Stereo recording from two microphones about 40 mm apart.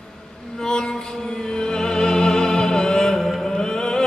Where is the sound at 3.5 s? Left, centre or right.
Centre.